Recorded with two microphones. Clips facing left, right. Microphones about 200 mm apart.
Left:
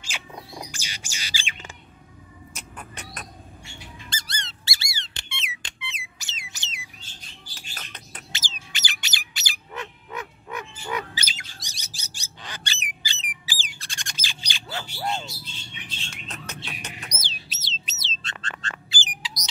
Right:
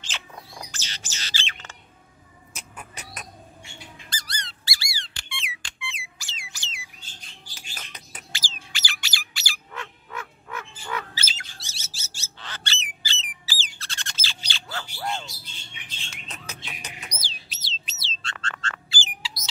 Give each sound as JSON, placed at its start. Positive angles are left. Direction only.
{"t": 0.0, "sound": "bird", "side_deg": 15}
{"t": 2.5, "sound": "a sound", "side_deg": 0}
{"t": 4.1, "sound": "squeak", "side_deg": 25}
{"t": 7.7, "sound": "bird", "side_deg": -5}
{"t": 8.3, "sound": "bird", "side_deg": 20}
{"t": 13.5, "sound": "squawk", "side_deg": 15}
{"t": 16.8, "sound": "bird", "side_deg": 0}
{"t": 17.2, "sound": "bird", "side_deg": 20}